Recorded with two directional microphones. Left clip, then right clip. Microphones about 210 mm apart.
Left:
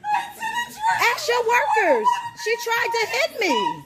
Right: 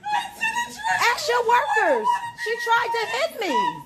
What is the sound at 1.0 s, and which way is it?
A woman's voice, 25° left (ahead or behind).